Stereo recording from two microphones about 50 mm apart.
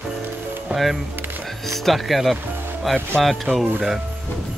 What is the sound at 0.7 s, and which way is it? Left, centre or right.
Speech, right.